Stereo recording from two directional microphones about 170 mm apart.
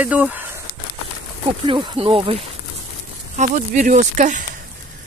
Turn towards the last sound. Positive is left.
turn(degrees=-45)  # may be behind; listen again after turning